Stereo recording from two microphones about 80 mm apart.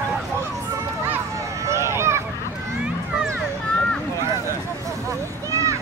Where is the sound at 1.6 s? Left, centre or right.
Right.